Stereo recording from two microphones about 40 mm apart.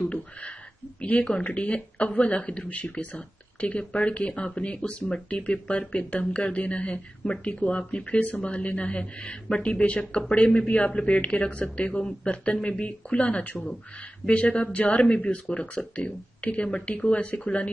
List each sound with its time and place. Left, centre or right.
1.3 s speech: left
2.7 s speech: left